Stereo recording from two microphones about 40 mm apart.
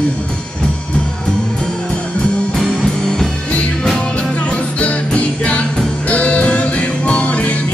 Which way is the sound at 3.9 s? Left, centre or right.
Left.